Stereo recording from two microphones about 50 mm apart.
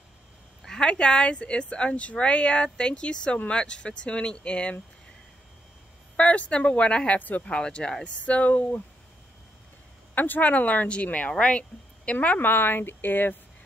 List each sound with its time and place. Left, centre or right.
0.7 s speech: centre
6.1 s speech: left
7.2 s speech: left
7.4 s speech: centre
10.1 s a woman's voice: left
12.4 s speech: left